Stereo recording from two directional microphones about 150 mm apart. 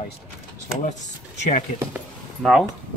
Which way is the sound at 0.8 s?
55° left (ahead or behind).